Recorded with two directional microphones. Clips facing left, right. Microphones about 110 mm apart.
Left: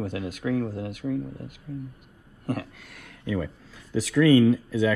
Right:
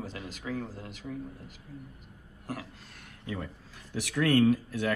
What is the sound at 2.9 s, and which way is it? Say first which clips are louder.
Speech: left 8 dB; 90° left.